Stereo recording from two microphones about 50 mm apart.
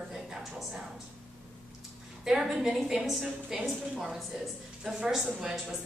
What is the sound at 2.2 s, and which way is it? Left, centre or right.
A woman's voice, centre.